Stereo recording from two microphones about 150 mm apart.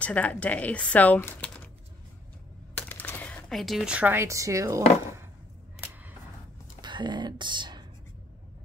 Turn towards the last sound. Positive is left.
turn(degrees=-30)  # may be behind; listen again after turning